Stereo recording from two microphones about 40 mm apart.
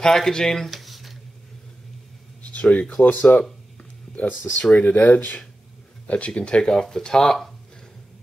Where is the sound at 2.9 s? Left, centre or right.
Left.